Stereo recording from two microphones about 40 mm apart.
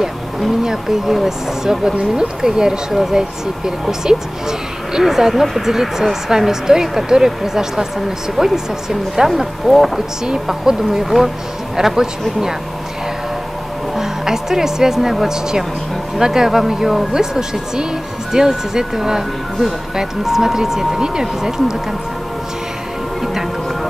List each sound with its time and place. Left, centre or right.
0.7 s speech: centre
10.2 s speech: centre
13.9 s speech: centre
23.2 s music: centre